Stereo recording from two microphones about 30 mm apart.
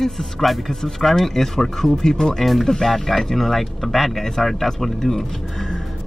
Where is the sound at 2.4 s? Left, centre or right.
Centre.